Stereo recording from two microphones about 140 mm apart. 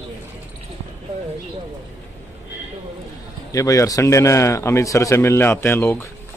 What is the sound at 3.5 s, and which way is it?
A man's voice, 25° left (ahead or behind).